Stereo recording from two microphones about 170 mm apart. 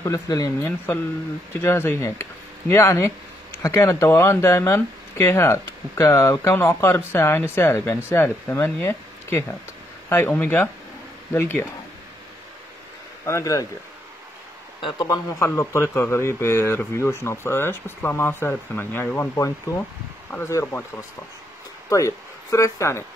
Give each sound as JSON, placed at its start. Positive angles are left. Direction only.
{"t": 0.0, "sound": "speech", "side_deg": 20}
{"t": 13.2, "sound": "speech", "side_deg": 20}
{"t": 14.8, "sound": "speech", "side_deg": 25}
{"t": 21.8, "sound": "speech", "side_deg": 20}